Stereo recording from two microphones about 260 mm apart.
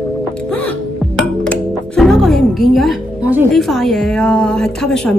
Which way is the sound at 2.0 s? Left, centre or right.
Centre.